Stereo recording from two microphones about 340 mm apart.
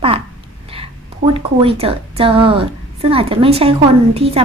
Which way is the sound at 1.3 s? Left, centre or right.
Centre.